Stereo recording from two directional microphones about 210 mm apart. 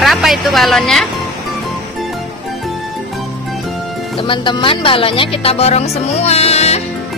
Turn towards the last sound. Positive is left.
turn(degrees=30)  # may be behind; listen again after turning